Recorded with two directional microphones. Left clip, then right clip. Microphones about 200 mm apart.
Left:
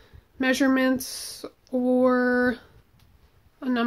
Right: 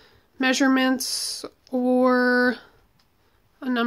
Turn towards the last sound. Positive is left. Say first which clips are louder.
# right 1 dB
turn(degrees=-15)  # may be behind; listen again after turning